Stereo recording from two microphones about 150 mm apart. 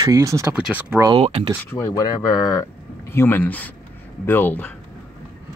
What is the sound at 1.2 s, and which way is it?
Speech, 35° right (ahead or behind).